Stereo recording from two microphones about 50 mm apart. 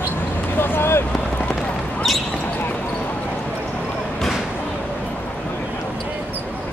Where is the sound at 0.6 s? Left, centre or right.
Left.